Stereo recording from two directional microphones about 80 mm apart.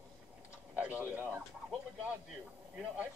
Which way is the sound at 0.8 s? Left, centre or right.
Centre.